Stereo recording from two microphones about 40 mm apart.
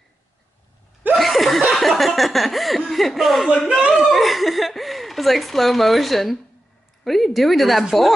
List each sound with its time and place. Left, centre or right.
1.1 s laughter: centre
2.9 s a man's voice: centre
3.6 s chuckle: centre
4.0 s chuckle: centre
7.1 s speech: centre